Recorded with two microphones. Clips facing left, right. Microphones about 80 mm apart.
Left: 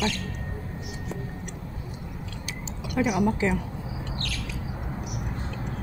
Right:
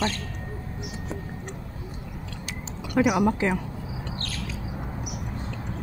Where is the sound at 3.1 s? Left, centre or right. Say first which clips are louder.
Right 1 dB; right.